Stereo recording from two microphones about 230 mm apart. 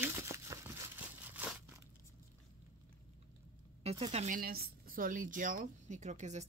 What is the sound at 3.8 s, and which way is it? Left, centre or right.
Speech, right.